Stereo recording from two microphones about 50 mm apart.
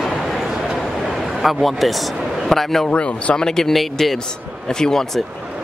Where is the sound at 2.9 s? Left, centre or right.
Left.